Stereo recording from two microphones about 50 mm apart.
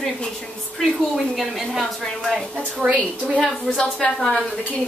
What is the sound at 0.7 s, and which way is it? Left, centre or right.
A woman's voice, centre.